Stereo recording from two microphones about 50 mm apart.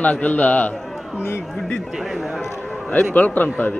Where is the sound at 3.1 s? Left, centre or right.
Left.